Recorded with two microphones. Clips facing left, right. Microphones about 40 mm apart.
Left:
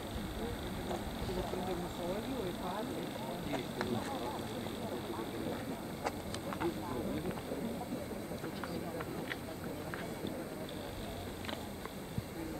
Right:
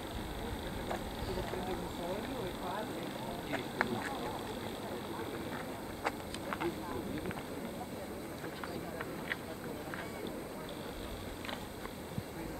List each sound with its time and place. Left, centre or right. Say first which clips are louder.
2.1 s speech: left 1 dB; centre
3.5 s speech: right 4 dB; right
6.0 s a sound: right 2 dB; right